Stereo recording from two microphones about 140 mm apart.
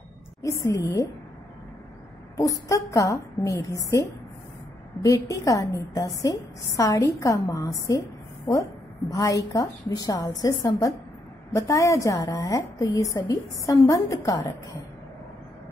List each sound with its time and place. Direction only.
0.4 s a woman's voice: 20° left (ahead or behind)
2.3 s a woman's voice: 25° left (ahead or behind)
9.1 s a woman's voice: 25° left (ahead or behind)